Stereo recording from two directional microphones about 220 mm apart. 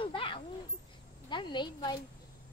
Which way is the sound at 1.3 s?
20° left (ahead or behind).